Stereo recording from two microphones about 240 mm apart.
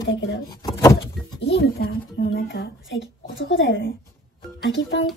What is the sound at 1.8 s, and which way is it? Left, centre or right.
Speech, left.